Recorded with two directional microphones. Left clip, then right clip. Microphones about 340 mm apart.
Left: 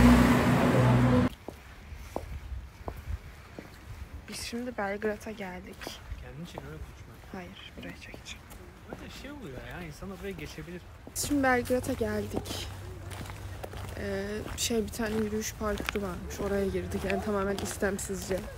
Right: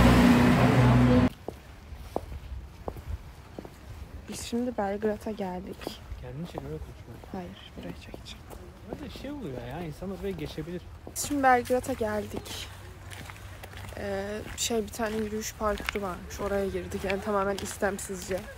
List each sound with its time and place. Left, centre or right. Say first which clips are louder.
0.1 s a sound: right 2 dB; centre
4.3 s speech: right 4 dB; centre
9.1 s speech: right 5 dB; right
11.1 s speech: right 4 dB; centre
13.9 s speech: right 2 dB; centre